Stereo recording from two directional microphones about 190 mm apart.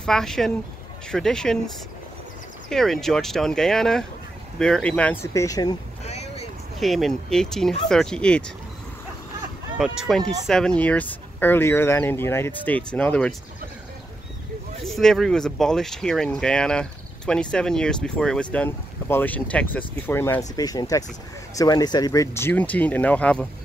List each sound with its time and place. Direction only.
0.0 s speech: centre (ahead or behind)
2.7 s speech: centre (ahead or behind); by 5.8 s 20° left (ahead or behind)
6.0 s boat: 35° left (ahead or behind)
6.8 s speech: centre (ahead or behind)
9.8 s speech: centre (ahead or behind)
14.9 s speech: centre (ahead or behind)